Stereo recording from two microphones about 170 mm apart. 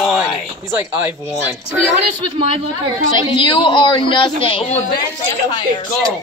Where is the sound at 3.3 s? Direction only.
30° left (ahead or behind).